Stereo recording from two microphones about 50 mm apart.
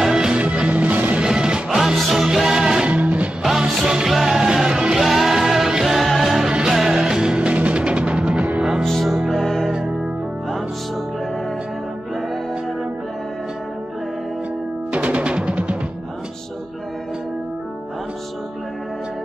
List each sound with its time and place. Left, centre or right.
0.0 s music: centre
0.4 s music: right
1.2 s music: centre
2.0 s music: centre
2.9 s music: right
3.4 s music: centre
6.5 s music: centre
8.8 s music: centre
14.9 s music: right